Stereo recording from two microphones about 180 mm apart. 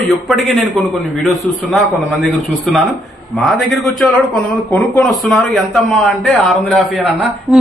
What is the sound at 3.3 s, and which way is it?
A man's voice, centre (ahead or behind).